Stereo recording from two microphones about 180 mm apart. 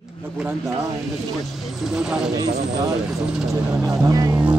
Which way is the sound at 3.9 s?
20° right (ahead or behind).